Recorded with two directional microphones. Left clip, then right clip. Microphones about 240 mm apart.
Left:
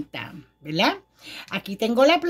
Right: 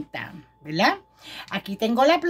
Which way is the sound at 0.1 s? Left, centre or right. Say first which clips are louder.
Right 1 dB; left.